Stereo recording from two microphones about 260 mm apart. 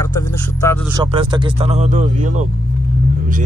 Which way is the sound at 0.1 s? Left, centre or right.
Centre.